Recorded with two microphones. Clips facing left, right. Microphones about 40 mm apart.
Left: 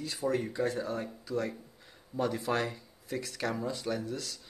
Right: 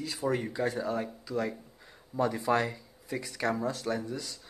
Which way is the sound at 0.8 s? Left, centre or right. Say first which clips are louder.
Right 3 dB; centre.